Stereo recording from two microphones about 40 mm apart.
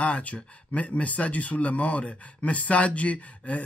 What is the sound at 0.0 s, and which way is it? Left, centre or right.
Speech, left.